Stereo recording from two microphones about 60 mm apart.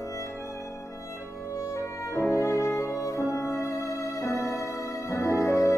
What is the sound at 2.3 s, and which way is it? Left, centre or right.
Music, left.